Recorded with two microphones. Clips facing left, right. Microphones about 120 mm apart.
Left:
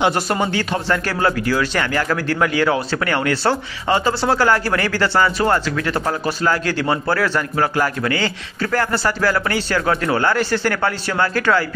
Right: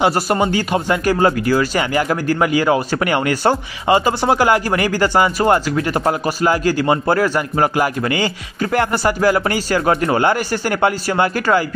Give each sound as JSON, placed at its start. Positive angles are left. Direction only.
{"t": 0.0, "sound": "speech", "side_deg": -5}